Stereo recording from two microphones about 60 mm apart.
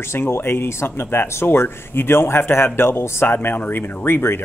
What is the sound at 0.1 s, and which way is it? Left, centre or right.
Speech, left.